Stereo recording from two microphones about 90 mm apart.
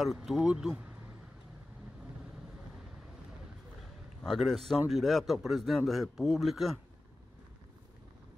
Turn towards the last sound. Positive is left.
turn(degrees=0)  # may be behind; listen again after turning